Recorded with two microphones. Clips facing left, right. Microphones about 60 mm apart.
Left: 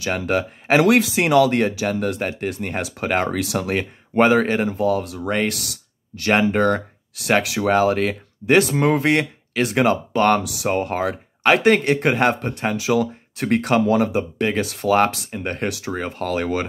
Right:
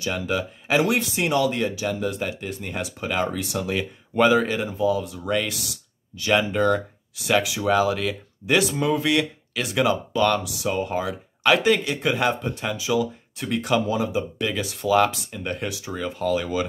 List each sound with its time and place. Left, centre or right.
0.1 s speech: left
0.7 s speech: left
4.6 s speech: left
5.2 s speech: left
5.5 s speech: left
6.5 s speech: left
7.6 s speech: left
8.7 s speech: left
10.4 s speech: left
15.0 s speech: left
15.3 s speech: left